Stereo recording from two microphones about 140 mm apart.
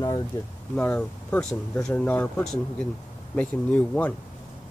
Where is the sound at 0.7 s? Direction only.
10° left (ahead or behind).